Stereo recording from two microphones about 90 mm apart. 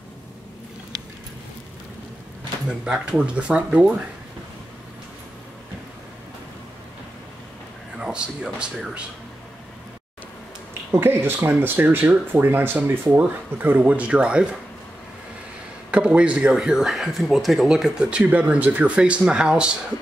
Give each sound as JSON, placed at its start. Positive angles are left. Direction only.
{"t": 2.7, "sound": "speech", "side_deg": -10}
{"t": 8.0, "sound": "speech", "side_deg": -10}
{"t": 10.9, "sound": "speech", "side_deg": -25}
{"t": 15.9, "sound": "speech", "side_deg": -15}